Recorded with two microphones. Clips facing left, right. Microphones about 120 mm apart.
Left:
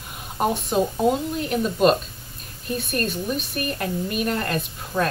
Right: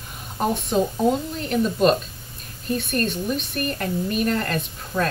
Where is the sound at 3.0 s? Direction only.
5° left (ahead or behind).